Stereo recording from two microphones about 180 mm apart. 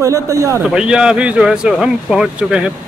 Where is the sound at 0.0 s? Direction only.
15° right (ahead or behind).